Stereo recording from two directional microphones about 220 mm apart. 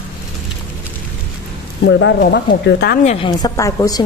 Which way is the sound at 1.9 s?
55° left (ahead or behind).